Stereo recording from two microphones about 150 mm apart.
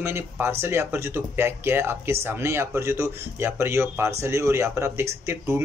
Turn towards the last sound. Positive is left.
turn(degrees=-20)  # may be behind; listen again after turning